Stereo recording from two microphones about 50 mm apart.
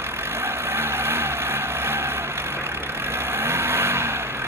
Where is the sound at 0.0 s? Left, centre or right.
Right.